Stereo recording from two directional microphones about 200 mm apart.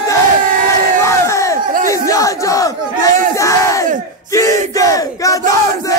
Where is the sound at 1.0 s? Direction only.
15° left (ahead or behind).